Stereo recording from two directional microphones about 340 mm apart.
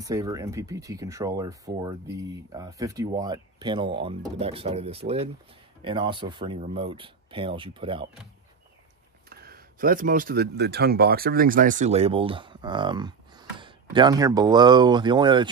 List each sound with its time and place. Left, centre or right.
0.0 s speech: centre
9.3 s speech: right